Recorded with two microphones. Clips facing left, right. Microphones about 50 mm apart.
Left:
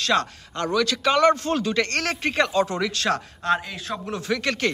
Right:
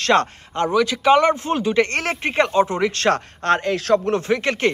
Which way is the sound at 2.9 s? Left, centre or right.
Right.